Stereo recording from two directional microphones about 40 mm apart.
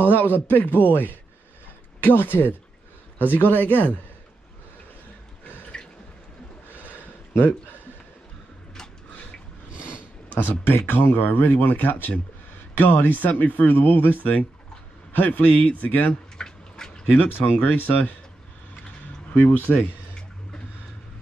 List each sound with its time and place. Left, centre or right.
0.0 s speech: left
2.0 s a sound: left
3.3 s speech: left
5.7 s water: left
6.7 s a sound: right
10.3 s speech: left
16.3 s a sound: centre
17.3 s speech: left
19.3 s speech: left